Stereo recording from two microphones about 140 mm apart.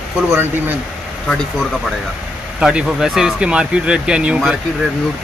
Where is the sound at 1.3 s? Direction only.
Centre (ahead or behind).